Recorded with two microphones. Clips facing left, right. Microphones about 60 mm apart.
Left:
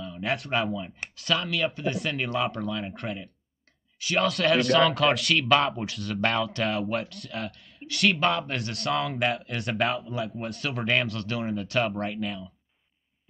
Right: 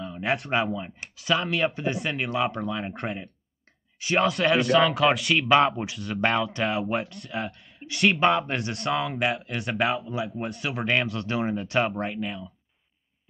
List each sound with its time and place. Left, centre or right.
0.0 s a sound: right
0.6 s speech: right
1.1 s speech: centre
1.5 s speech: right
2.0 s speech: centre
4.2 s speech: centre
5.5 s speech: centre
8.1 s speech: centre
11.2 s speech: right
11.9 s speech: centre